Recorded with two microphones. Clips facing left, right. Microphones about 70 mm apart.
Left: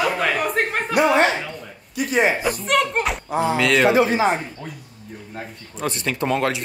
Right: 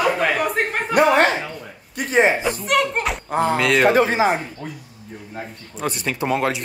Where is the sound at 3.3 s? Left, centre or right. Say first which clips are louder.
Right 3 dB; right.